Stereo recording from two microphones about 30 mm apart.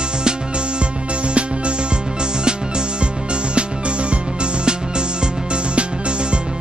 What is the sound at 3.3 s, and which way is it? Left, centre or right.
Music, right.